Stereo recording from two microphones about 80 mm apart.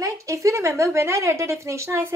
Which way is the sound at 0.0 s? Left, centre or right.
Right.